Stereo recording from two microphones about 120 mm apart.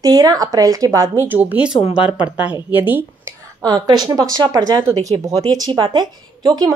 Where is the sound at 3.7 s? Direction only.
30° right (ahead or behind).